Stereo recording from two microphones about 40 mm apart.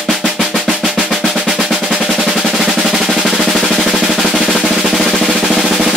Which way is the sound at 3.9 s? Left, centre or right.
Centre.